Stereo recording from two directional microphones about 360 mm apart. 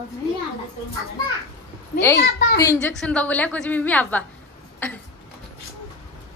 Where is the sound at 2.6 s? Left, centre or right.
Centre.